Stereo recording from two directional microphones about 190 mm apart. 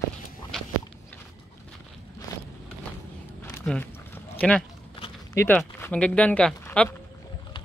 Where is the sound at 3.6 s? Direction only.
10° left (ahead or behind).